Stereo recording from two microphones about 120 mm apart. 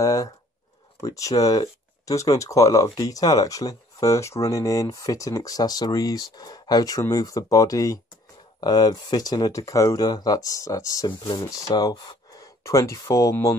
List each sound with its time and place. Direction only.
0.0 s a sound: 30° left (ahead or behind)
1.0 s speech: 30° left (ahead or behind)
11.1 s speech: 40° left (ahead or behind)